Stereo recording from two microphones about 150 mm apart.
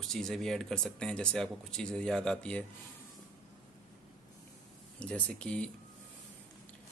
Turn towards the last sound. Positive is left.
turn(degrees=5)  # may be behind; listen again after turning